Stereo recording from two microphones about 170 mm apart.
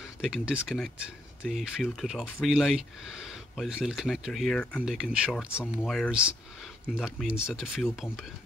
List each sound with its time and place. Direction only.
0.0 s speech: 5° right (ahead or behind)
5.8 s speech: 5° left (ahead or behind)